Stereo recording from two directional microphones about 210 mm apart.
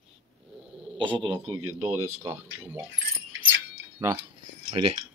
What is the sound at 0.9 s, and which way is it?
Speech, 25° right (ahead or behind).